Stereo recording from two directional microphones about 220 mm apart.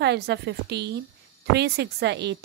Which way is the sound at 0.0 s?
50° right (ahead or behind).